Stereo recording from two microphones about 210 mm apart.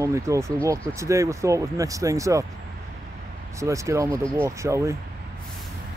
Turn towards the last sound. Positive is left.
turn(degrees=-15)  # may be behind; listen again after turning